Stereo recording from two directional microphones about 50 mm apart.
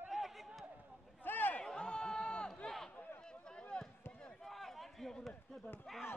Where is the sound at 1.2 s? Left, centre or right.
Left.